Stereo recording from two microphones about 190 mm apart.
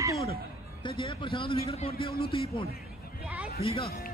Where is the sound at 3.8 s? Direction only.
55° left (ahead or behind).